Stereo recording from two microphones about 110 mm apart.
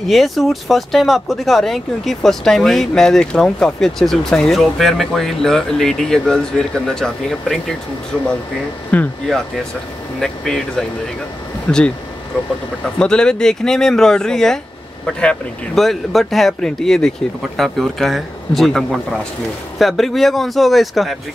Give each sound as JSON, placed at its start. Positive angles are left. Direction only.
{"t": 0.1, "sound": "speech", "side_deg": 0}
{"t": 8.9, "sound": "speech", "side_deg": 15}
{"t": 13.0, "sound": "speech", "side_deg": 5}